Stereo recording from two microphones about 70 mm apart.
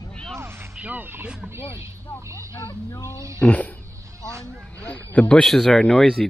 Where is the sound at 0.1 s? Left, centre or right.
Centre.